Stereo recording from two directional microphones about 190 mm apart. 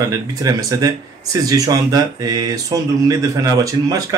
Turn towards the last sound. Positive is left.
turn(degrees=-15)  # may be behind; listen again after turning